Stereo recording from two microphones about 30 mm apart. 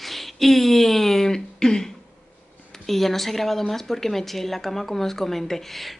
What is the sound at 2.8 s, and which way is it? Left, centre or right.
A woman's voice, centre.